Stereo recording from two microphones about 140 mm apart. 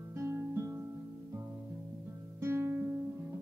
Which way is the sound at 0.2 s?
20° right (ahead or behind).